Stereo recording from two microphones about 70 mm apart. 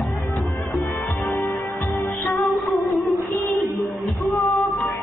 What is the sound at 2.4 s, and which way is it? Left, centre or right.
Music, centre.